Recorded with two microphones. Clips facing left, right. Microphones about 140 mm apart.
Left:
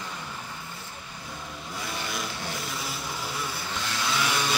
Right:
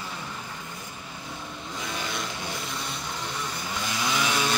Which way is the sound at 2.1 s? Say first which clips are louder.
Even; centre (ahead or behind).